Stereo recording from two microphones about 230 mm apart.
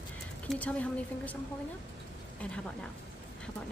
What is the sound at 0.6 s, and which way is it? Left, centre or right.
Speech, centre.